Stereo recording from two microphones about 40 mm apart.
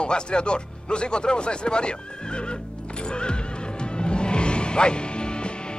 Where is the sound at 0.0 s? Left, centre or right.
Left.